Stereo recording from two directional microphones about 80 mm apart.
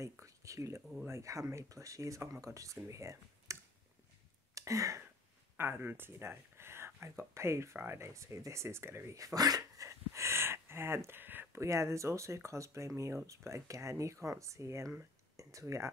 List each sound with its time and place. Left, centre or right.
0.0 s a sound: right
1.0 s speech: right
4.6 s a sound: right
5.6 s speech: right
9.8 s speech: right
11.6 s speech: right